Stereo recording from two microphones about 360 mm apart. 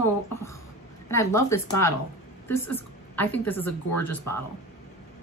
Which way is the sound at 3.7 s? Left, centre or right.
Left.